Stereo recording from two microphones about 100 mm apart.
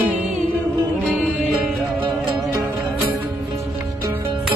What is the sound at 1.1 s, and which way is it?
Music, 15° right (ahead or behind).